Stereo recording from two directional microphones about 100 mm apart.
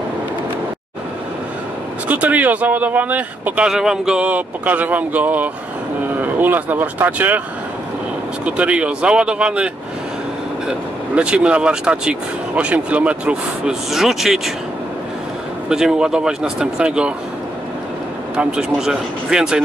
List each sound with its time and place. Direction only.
2.0 s speech: 15° right (ahead or behind)
8.5 s speech: 10° right (ahead or behind)
10.7 s speech: 10° right (ahead or behind)
15.7 s speech: 5° right (ahead or behind)
18.3 s speech: 10° right (ahead or behind)